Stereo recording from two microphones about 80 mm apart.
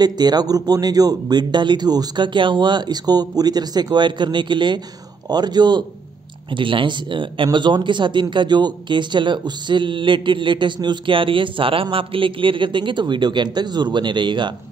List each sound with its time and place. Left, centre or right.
0.0 s speech: right
5.3 s speech: right
6.5 s speech: right
7.5 s speech: right